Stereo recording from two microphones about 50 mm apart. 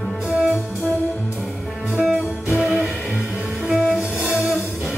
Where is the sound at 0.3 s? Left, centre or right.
Right.